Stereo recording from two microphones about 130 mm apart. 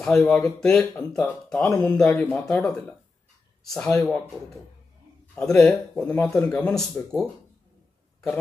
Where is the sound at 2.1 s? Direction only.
20° left (ahead or behind).